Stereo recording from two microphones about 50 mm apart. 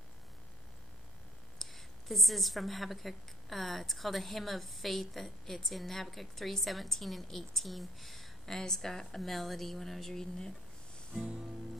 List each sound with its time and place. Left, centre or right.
1.6 s a woman's voice: centre
11.2 s music: centre